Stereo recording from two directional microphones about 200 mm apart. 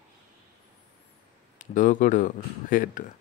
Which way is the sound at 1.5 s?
40° left (ahead or behind).